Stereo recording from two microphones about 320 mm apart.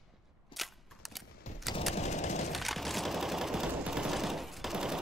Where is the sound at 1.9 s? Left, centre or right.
Left.